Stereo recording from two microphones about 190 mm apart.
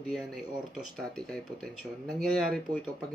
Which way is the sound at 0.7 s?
Centre (ahead or behind).